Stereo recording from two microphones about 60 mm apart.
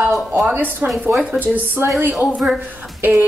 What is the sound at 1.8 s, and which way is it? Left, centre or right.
Speech, right.